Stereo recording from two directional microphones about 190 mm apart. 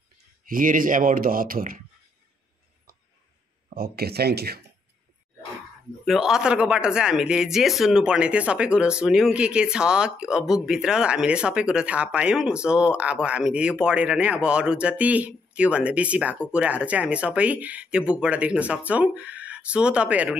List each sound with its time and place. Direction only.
0.5 s speech: 45° right (ahead or behind)
3.7 s speech: 50° right (ahead or behind)
6.0 s speech: centre (ahead or behind)